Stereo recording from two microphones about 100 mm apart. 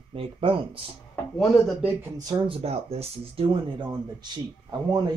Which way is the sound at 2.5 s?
85° right.